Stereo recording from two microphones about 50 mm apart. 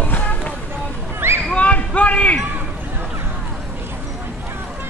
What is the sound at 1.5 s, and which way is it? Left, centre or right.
Basketball bounce, left.